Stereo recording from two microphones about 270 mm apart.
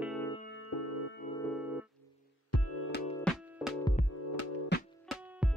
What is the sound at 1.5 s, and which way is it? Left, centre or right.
Organ, centre.